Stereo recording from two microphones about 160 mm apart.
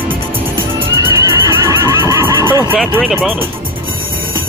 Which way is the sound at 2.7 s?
Centre (ahead or behind).